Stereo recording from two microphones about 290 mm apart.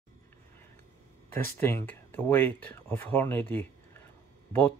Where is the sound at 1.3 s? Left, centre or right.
Centre.